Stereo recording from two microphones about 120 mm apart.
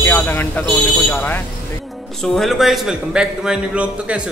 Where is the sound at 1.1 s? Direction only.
15° left (ahead or behind).